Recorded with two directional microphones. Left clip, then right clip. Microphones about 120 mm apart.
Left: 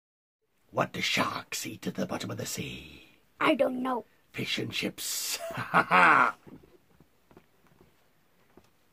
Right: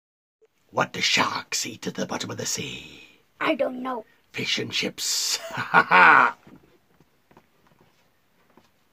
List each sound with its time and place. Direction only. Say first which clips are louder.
0.7 s speech: right 6 dB; 30° right (ahead or behind)
3.3 s a woman's voice: right 1 dB; 40° left (ahead or behind)
4.3 s speech: right 7 dB; 30° right (ahead or behind)